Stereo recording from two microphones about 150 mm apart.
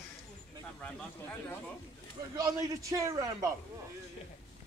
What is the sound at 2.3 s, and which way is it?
Speech, 25° right (ahead or behind).